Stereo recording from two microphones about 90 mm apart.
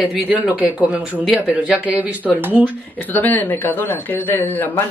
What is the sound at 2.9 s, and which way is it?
Speech, 20° left (ahead or behind).